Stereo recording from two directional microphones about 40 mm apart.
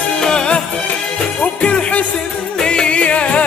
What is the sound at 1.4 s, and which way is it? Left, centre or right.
Music, left.